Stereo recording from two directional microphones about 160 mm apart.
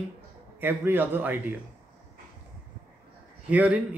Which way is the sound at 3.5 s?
10° right (ahead or behind).